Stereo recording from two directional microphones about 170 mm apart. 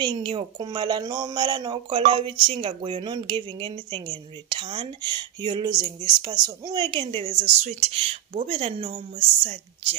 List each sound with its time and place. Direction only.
0.0 s speech: 25° right (ahead or behind)